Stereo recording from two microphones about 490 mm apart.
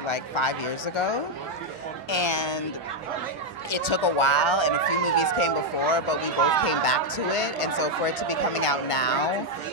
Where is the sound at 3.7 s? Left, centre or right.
Left.